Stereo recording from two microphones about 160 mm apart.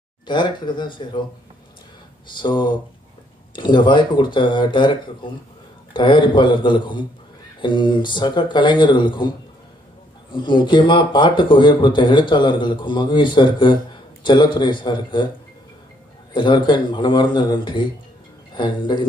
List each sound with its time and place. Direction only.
0.3 s speech: 30° left (ahead or behind)
2.3 s speech: 30° left (ahead or behind)
10.3 s speech: 30° left (ahead or behind)
16.3 s speech: 30° left (ahead or behind)